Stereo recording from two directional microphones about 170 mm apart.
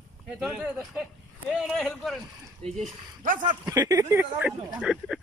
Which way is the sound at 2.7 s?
50° right (ahead or behind).